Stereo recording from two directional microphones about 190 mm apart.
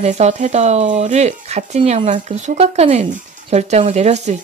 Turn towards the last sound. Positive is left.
turn(degrees=-35)  # may be behind; listen again after turning